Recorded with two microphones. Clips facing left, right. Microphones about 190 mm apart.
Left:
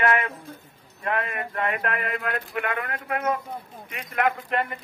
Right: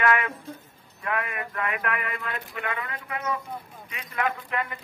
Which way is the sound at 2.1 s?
60° left (ahead or behind).